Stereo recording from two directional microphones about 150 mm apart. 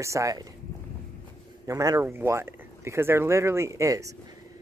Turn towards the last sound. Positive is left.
turn(degrees=-20)  # may be behind; listen again after turning